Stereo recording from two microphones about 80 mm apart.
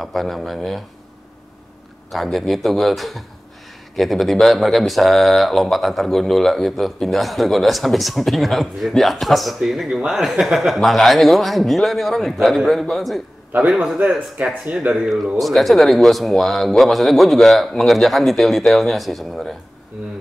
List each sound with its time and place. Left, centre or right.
0.0 s speech: centre
2.0 s speech: centre
13.5 s a man's voice: centre